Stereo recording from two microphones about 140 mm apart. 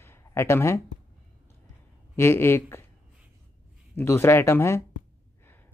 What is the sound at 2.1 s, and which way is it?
Speech, 20° left (ahead or behind).